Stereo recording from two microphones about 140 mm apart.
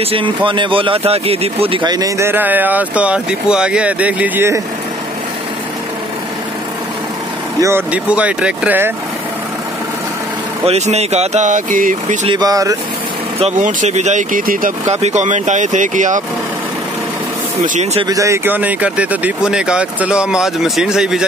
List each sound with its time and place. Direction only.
0.0 s speech: 40° right (ahead or behind); by 4.6 s 15° right (ahead or behind)
7.6 s speech: 15° right (ahead or behind)
10.6 s speech: 50° right (ahead or behind); by 12.2 s 70° right (ahead or behind)
12.3 s speech: 30° right (ahead or behind)
13.4 s speech: 65° right (ahead or behind); by 14.7 s 80° right
14.9 s speech: 50° right (ahead or behind)
17.6 s speech: 55° right (ahead or behind)
18.0 s speech: 25° right (ahead or behind); by 21.3 s 5° right (ahead or behind)